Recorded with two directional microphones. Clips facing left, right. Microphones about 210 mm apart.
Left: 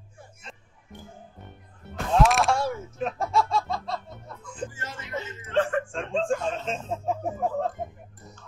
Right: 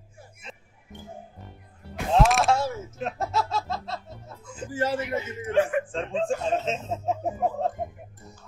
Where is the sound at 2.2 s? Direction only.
Centre (ahead or behind).